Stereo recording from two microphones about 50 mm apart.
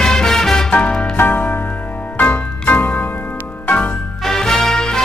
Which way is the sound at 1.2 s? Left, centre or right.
Left.